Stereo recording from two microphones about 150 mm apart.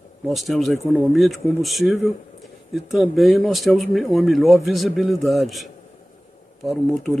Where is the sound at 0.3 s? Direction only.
Centre (ahead or behind).